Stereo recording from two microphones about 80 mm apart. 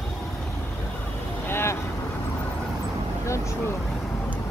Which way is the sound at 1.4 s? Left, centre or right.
Left.